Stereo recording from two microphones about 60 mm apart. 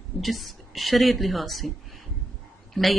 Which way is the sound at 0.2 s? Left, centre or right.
Centre.